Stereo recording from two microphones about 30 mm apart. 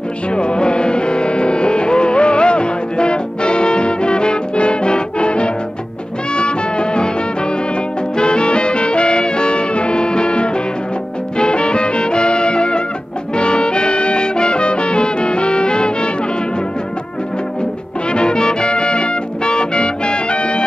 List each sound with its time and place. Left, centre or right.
0.4 s music: left
8.2 s music: left
18.1 s music: left